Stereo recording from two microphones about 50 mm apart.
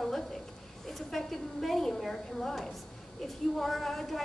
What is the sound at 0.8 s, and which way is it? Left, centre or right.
A woman's voice, centre.